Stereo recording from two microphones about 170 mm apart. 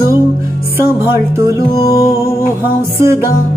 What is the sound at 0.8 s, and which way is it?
Music, 15° right (ahead or behind).